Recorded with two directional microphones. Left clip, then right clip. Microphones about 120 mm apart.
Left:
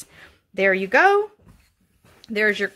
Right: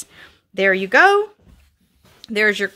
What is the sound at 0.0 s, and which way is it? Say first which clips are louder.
Speech: right 4 dB; 15° right (ahead or behind).